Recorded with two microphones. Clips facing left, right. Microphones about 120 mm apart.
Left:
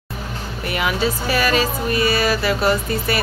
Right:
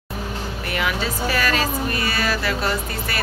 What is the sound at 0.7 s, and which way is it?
Speech, 15° left (ahead or behind).